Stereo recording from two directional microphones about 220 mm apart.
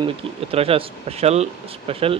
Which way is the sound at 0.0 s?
25° right (ahead or behind).